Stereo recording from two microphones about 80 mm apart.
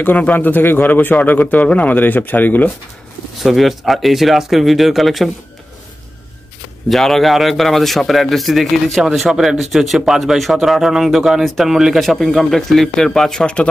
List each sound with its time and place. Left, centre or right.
0.0 s speech: centre
3.4 s a man's voice: centre
6.9 s a man's voice: centre